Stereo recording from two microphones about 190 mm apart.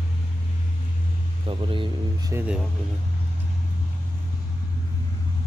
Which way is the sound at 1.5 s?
25° right (ahead or behind).